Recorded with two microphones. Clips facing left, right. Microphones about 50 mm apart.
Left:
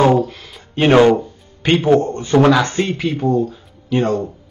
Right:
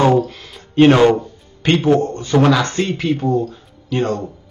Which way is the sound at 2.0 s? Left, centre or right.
Left.